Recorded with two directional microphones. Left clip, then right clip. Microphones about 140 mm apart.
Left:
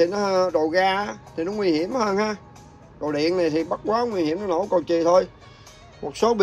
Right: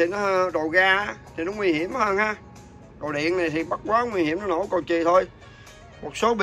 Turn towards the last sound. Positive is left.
turn(degrees=50)  # may be behind; listen again after turning